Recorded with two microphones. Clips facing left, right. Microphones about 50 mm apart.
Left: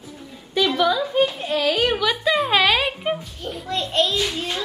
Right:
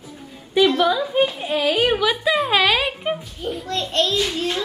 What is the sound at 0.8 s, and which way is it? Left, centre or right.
A child's voice, centre.